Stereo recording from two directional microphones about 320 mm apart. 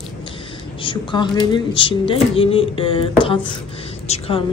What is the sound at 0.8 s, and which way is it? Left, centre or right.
A woman's voice, centre.